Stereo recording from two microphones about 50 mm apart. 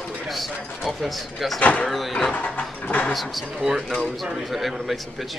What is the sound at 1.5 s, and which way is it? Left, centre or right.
Speech, left.